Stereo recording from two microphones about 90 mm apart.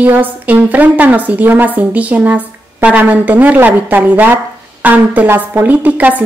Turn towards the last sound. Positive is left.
turn(degrees=-20)  # may be behind; listen again after turning